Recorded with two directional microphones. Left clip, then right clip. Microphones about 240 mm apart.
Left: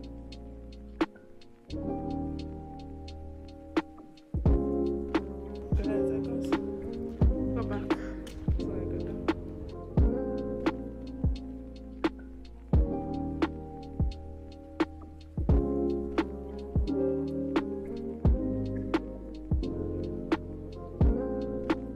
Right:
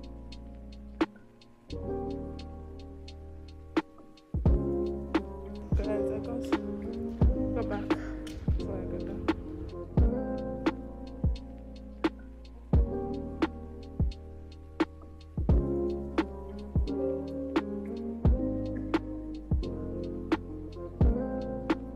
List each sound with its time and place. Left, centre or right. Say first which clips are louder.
1.0 s music: even; centre
3.8 s music: even; centre